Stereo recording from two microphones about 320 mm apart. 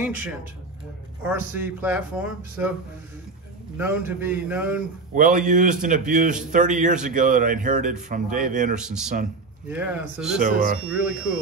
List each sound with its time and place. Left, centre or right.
1.2 s speech: centre
3.7 s a man's voice: centre
5.1 s speech: right
8.7 s speech: centre
10.4 s speech: right